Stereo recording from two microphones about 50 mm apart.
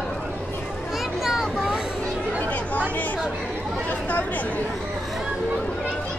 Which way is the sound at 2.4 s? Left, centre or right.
Left.